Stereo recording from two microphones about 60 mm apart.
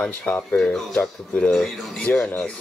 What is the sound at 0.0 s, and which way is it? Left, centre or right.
Speech, left.